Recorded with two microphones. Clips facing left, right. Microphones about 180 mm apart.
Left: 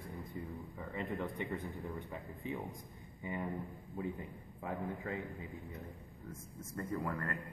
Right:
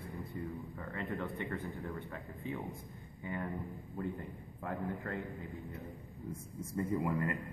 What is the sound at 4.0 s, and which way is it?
Speech, 5° left (ahead or behind).